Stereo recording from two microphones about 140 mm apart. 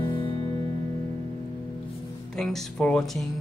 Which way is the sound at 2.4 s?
5° left (ahead or behind).